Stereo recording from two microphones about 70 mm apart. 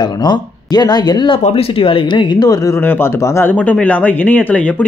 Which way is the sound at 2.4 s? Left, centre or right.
Left.